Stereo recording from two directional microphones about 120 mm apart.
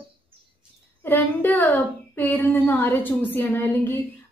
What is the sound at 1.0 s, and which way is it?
A woman's voice, 15° left (ahead or behind).